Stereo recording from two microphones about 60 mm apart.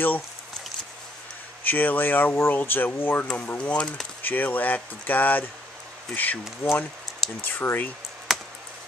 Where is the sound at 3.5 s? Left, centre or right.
Centre.